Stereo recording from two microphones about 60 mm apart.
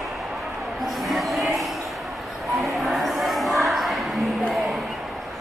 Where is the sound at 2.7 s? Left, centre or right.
Centre.